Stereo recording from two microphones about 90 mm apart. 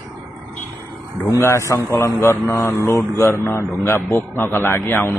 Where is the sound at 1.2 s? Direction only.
30° left (ahead or behind).